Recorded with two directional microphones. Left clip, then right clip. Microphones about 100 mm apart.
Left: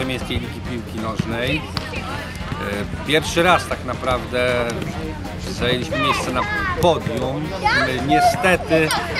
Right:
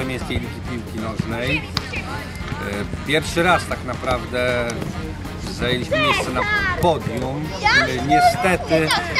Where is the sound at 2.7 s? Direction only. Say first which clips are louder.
Left 2 dB; 5° left (ahead or behind).